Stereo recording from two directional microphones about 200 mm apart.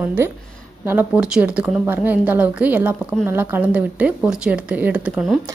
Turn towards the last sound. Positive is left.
turn(degrees=-5)  # may be behind; listen again after turning